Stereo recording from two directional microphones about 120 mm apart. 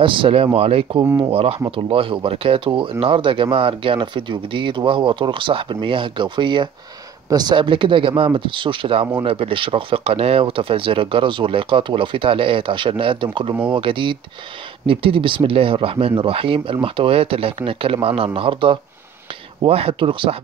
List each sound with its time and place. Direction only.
0.0 s speech: 45° right (ahead or behind)
1.0 s speech: 20° right (ahead or behind)
1.3 s speech: 55° right (ahead or behind)